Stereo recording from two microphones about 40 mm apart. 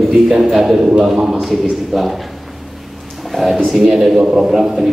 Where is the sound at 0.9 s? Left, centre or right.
Right.